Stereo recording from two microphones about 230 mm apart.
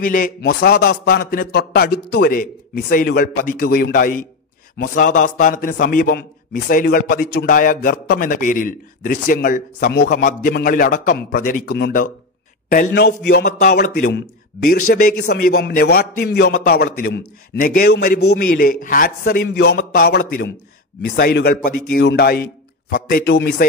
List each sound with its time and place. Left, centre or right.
0.0 s a man's voice: left